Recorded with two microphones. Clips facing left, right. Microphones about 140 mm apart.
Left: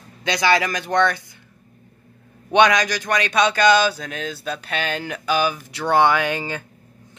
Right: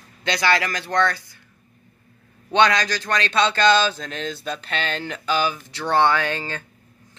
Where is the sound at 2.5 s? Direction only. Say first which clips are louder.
Left 2 dB; 15° left (ahead or behind).